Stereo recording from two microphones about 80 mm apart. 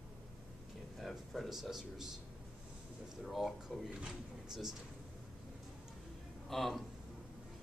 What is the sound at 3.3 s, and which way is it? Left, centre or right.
Speech, centre.